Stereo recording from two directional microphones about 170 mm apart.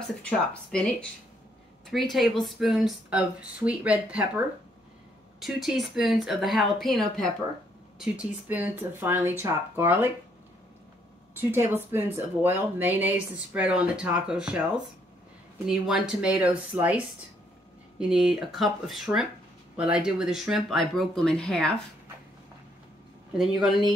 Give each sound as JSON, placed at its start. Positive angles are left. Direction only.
{"t": 0.2, "sound": "speech", "side_deg": 5}
{"t": 11.3, "sound": "speech", "side_deg": -15}
{"t": 15.6, "sound": "speech", "side_deg": -5}
{"t": 23.3, "sound": "speech", "side_deg": -5}